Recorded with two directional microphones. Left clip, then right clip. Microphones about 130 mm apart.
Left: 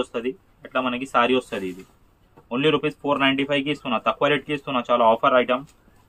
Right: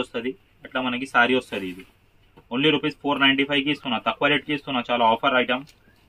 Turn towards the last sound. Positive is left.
turn(degrees=5)  # may be behind; listen again after turning